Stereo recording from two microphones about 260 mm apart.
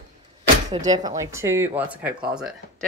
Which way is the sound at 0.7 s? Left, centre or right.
Centre.